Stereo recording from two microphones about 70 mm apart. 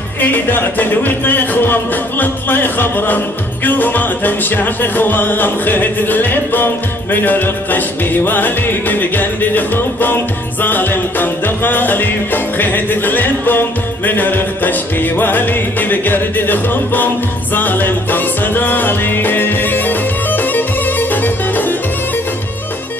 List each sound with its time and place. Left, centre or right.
0.2 s music: left